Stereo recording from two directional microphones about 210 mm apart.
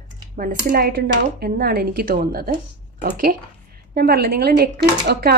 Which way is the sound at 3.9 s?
45° right (ahead or behind).